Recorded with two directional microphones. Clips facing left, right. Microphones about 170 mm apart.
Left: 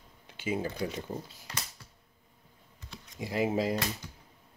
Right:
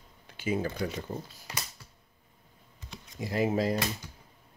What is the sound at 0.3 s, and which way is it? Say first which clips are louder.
Speech: right 2 dB; 20° left (ahead or behind).